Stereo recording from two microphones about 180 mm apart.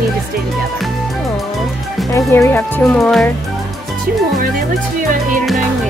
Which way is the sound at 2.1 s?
15° left (ahead or behind).